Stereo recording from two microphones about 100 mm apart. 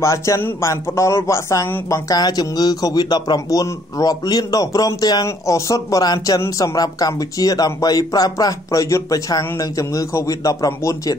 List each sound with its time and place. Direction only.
0.0 s speech: 30° left (ahead or behind)